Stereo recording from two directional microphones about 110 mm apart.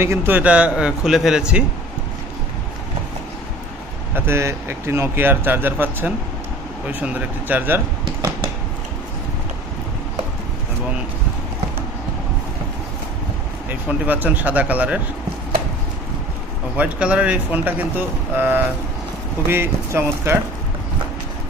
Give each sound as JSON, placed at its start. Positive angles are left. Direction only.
{"t": 0.0, "sound": "speech", "side_deg": -20}
{"t": 4.1, "sound": "speech", "side_deg": -25}
{"t": 13.7, "sound": "speech", "side_deg": -15}
{"t": 16.7, "sound": "speech", "side_deg": -10}